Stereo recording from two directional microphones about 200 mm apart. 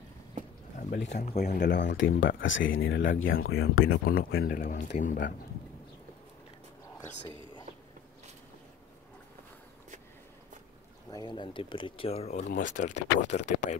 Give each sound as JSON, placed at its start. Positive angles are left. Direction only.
{"t": 0.8, "sound": "a sound", "side_deg": 40}
{"t": 1.1, "sound": "speech", "side_deg": 35}
{"t": 2.8, "sound": "speech", "side_deg": 60}
{"t": 3.3, "sound": "speech", "side_deg": 50}
{"t": 11.1, "sound": "speech", "side_deg": 20}